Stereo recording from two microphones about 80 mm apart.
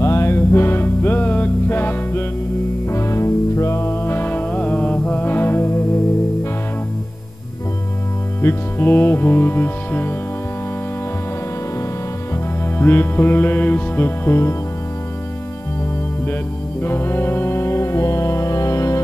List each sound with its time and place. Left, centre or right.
0.0 s music: left
2.9 s music: left
8.4 s music: left
12.7 s music: left
16.8 s music: left